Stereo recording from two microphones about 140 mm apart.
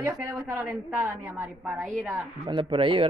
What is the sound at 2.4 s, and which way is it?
Speech, 35° right (ahead or behind).